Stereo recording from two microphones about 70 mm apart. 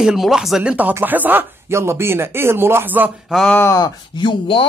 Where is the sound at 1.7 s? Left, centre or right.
Right.